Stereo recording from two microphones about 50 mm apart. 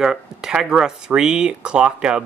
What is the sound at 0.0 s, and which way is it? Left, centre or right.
Speech, centre.